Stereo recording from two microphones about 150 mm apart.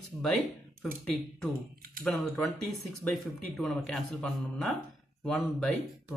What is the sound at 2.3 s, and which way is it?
Speech, centre (ahead or behind).